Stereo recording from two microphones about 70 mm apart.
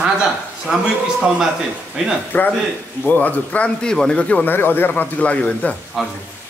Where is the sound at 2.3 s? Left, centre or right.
Left.